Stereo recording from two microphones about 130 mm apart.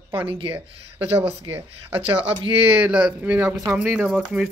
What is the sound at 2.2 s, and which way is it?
Speech, 45° right (ahead or behind).